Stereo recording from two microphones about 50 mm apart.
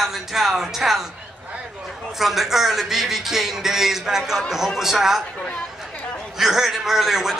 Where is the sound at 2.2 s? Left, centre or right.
Centre.